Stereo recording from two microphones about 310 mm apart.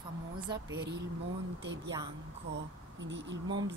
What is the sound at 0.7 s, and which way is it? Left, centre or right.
Speech, right.